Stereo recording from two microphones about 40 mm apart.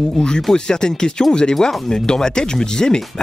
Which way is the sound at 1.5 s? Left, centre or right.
Centre.